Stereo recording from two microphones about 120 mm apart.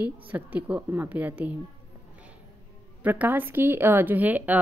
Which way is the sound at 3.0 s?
15° right (ahead or behind).